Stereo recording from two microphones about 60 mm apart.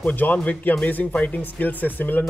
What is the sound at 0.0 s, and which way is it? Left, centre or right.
Speech, left.